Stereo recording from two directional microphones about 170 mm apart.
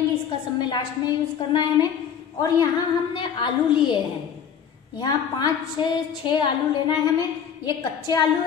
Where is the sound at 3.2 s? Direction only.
30° left (ahead or behind).